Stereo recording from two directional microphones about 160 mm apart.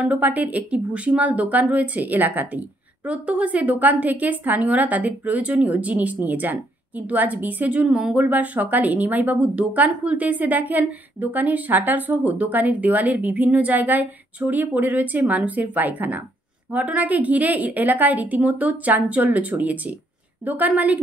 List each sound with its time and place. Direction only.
0.0 s a woman's voice: 10° right (ahead or behind)